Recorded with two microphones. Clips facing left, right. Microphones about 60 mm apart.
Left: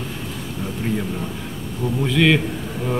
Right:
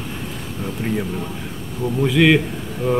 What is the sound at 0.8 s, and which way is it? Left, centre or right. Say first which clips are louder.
Speech: even; right.